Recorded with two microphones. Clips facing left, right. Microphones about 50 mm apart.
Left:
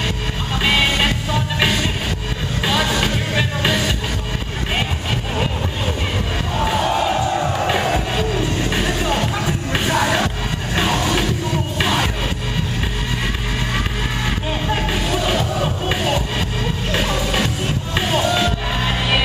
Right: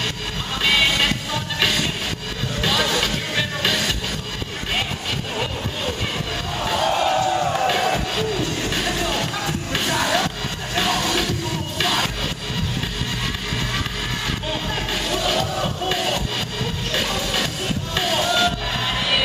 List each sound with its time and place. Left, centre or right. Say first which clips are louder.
0.7 s music: left 1 dB; centre
6.6 s music: left 1 dB; centre
14.5 s music: left 5 dB; centre